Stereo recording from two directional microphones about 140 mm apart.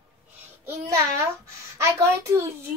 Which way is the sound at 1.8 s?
20° right (ahead or behind).